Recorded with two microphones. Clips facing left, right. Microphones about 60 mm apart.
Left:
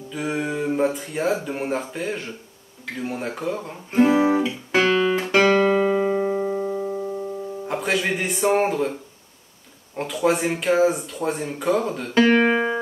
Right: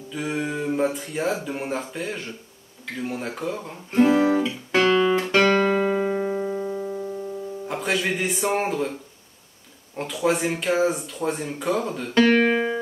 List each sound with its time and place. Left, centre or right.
0.1 s speech: centre
3.0 s guitar: centre
6.1 s music: centre
7.6 s speech: centre
9.9 s speech: centre